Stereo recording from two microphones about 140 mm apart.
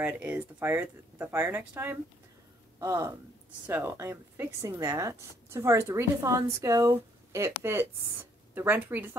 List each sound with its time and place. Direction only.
0.0 s speech: 10° right (ahead or behind)